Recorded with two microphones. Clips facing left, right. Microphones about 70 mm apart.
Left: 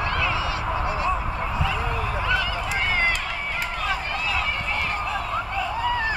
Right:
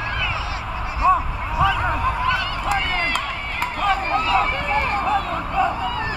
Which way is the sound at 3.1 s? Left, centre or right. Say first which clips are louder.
Right 3 dB; right.